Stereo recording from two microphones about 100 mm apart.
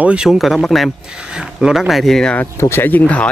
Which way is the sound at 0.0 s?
10° right (ahead or behind).